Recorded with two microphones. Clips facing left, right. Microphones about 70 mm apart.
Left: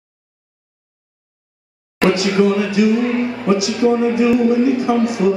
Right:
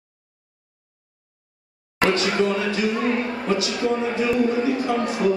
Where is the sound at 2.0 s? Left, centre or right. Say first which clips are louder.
Left 6 dB; centre.